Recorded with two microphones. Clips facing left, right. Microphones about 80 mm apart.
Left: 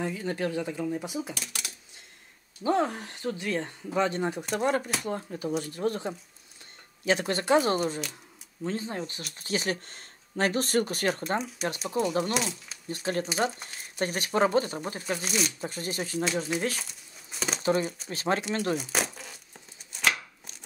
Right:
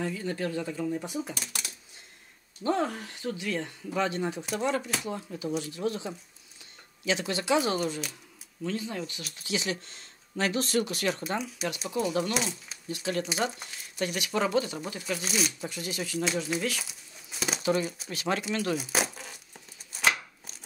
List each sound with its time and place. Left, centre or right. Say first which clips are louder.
0.0 s speech: left 1 dB; left
2.6 s speech: left 2 dB; centre
3.0 s speech: left 1 dB; left
4.6 s speech: left 2 dB; left
11.6 s speech: left 2 dB; centre
12.8 s speech: left 1 dB; left
15.2 s speech: right 1 dB; centre
15.6 s speech: left 2 dB; left
16.8 s crumpling: even; centre
17.8 s speech: left 1 dB; centre
18.1 s speech: left 2 dB; left
18.8 s crumpling: right 1 dB; centre
19.9 s chopping: right 1 dB; centre